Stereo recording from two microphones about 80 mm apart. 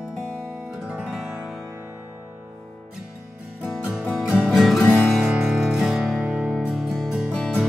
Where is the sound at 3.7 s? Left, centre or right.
Centre.